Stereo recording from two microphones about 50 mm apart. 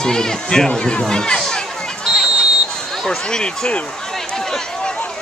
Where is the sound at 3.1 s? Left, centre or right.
Centre.